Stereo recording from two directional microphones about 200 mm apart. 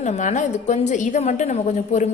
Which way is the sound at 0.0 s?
35° left (ahead or behind).